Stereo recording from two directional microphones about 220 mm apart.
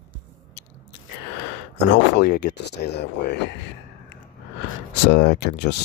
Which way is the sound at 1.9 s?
50° left (ahead or behind).